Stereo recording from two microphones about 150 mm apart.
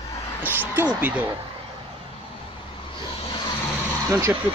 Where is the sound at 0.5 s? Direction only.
15° right (ahead or behind).